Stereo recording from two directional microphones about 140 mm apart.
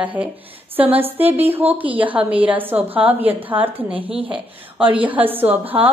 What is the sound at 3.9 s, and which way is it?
Speech, 40° right (ahead or behind).